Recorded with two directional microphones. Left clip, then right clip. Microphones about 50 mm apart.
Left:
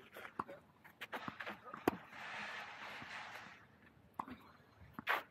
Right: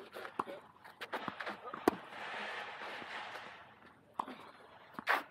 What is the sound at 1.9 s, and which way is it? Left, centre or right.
Fireworks, centre.